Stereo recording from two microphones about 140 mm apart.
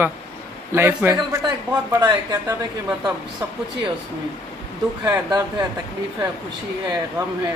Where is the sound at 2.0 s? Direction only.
30° right (ahead or behind).